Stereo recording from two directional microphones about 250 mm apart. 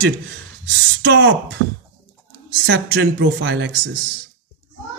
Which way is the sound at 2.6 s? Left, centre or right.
Right.